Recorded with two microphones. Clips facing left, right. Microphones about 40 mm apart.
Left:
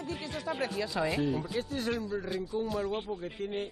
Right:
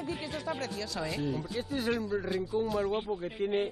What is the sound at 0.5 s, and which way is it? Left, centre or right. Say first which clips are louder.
Speech: left 4 dB; left.